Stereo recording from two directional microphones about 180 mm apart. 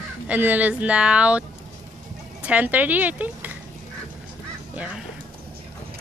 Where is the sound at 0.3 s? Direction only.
10° right (ahead or behind).